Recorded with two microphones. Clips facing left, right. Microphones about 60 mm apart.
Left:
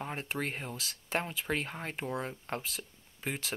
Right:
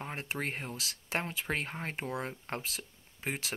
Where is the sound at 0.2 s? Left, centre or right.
Right.